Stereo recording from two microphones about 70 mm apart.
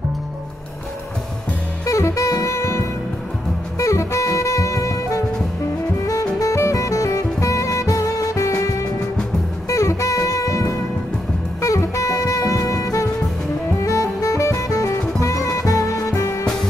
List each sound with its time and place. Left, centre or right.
1.9 s saxophone: left
6.0 s jazz: left
9.7 s saxophone: left
13.7 s music: left